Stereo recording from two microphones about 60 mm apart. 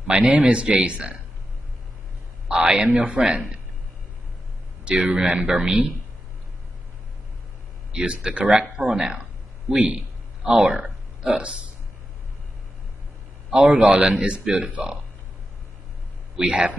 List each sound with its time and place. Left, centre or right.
0.1 s a man's voice: right
2.4 s a man's voice: centre
4.8 s speech: centre
7.9 s a man's voice: centre
13.9 s speech: centre
16.3 s a man's voice: centre